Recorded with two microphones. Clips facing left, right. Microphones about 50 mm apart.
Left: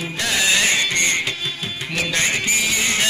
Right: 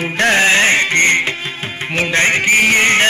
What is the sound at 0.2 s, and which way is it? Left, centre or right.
Music, right.